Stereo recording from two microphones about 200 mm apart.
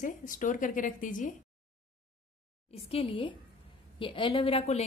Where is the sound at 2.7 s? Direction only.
30° left (ahead or behind).